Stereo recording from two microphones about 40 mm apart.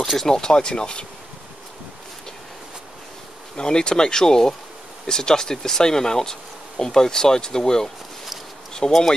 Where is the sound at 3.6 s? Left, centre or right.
Left.